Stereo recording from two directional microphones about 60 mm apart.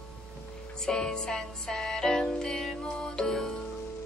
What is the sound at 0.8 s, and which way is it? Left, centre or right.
Music, centre.